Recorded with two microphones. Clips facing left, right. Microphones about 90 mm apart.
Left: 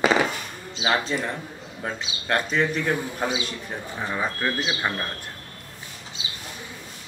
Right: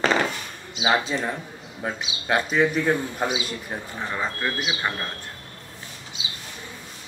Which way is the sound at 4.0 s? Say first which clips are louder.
Left 1 dB; 5° left (ahead or behind).